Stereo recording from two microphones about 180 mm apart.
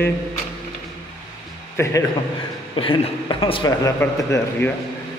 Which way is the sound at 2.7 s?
30° left (ahead or behind).